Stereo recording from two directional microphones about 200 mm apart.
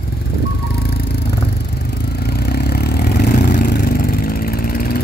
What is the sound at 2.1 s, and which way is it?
Vehicle, 55° left (ahead or behind).